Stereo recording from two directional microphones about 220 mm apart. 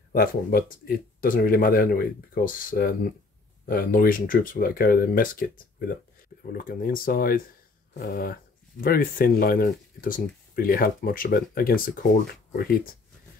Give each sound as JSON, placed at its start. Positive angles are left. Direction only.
{"t": 0.1, "sound": "speech", "side_deg": 40}